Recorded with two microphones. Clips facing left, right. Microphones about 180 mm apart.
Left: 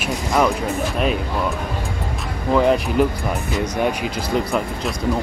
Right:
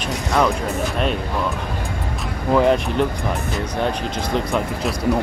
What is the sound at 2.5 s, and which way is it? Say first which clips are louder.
Speech: even; centre (ahead or behind).